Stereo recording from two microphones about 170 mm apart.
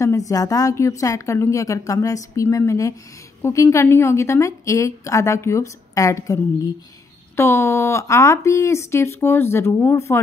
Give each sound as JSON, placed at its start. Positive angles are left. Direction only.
{"t": 0.0, "sound": "a woman's voice", "side_deg": 20}